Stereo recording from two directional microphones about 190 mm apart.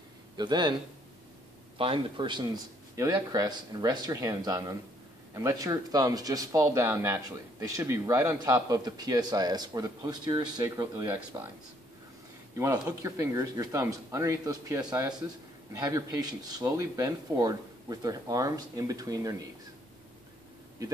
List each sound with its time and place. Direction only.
0.4 s speech: 25° right (ahead or behind)
1.8 s speech: 30° right (ahead or behind)
12.5 s speech: 15° right (ahead or behind)